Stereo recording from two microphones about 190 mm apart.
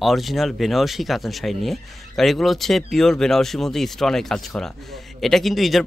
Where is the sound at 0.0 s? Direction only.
Centre (ahead or behind).